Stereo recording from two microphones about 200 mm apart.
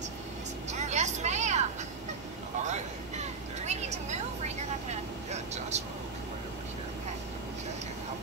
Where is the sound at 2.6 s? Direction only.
35° right (ahead or behind).